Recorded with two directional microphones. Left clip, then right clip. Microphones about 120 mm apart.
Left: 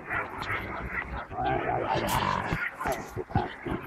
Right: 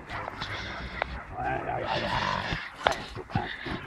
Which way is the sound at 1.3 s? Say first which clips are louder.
Left 4 dB; 15° right (ahead or behind).